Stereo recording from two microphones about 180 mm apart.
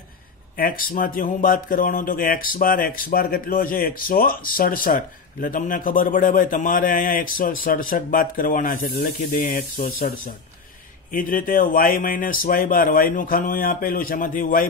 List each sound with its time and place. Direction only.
0.6 s speech: 50° left (ahead or behind)